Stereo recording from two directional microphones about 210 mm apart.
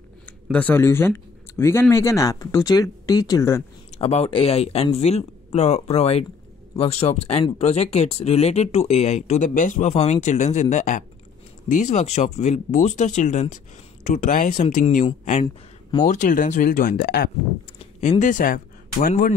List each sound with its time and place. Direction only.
0.5 s speech: 5° left (ahead or behind)
3.9 s speech: 30° left (ahead or behind)
15.4 s speech: 20° left (ahead or behind)
16.1 s speech: 35° left (ahead or behind)
17.0 s speech: 50° left (ahead or behind)
17.7 s speech: 30° left (ahead or behind)